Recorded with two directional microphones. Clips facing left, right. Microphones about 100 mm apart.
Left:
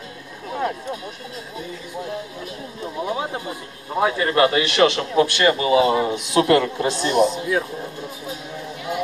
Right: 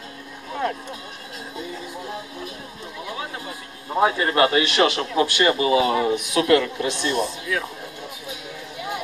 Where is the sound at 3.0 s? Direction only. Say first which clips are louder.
Left 6 dB; 25° left (ahead or behind).